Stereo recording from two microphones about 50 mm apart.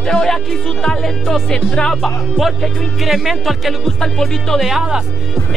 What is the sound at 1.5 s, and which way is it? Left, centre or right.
Speech, centre.